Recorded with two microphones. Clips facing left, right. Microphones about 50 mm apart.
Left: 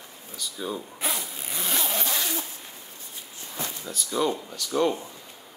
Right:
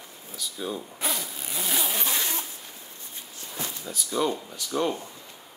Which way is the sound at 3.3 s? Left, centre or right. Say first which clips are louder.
Left 1 dB; left.